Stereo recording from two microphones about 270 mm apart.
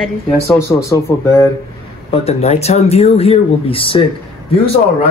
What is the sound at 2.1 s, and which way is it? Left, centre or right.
Speech, left.